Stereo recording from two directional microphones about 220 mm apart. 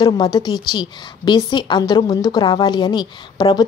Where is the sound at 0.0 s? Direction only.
20° left (ahead or behind).